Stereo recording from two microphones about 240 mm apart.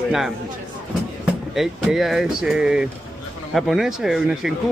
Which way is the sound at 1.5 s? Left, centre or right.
Centre.